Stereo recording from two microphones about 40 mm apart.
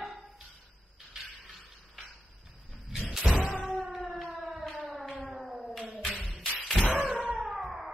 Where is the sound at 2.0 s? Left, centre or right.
Centre.